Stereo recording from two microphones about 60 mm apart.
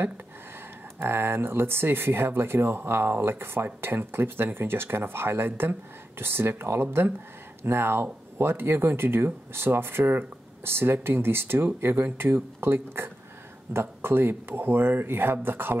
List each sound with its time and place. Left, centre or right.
0.9 s speech: right